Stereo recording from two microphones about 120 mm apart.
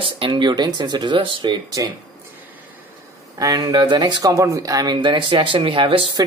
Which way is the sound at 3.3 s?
30° right (ahead or behind).